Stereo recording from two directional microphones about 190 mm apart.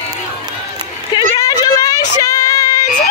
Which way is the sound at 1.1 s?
20° left (ahead or behind).